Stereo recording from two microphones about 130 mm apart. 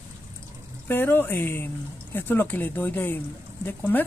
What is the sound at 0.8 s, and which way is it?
Speech, 15° left (ahead or behind).